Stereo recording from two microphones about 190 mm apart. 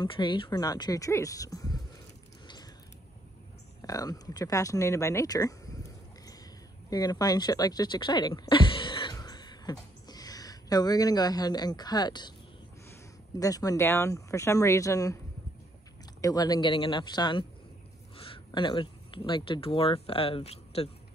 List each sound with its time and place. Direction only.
0.0 s speech: 25° left (ahead or behind)
3.8 s speech: 20° left (ahead or behind)
6.9 s speech: 20° left (ahead or behind)
13.4 s speech: 20° left (ahead or behind)
16.2 s speech: 20° left (ahead or behind)